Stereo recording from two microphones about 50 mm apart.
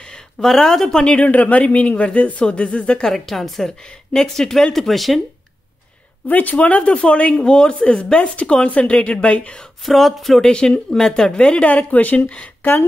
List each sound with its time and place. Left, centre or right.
0.0 s speech: centre
1.1 s speech: left
3.1 s a woman's voice: centre
3.8 s a woman's voice: centre
6.2 s speech: left
9.8 s a woman's voice: centre
10.4 s speech: centre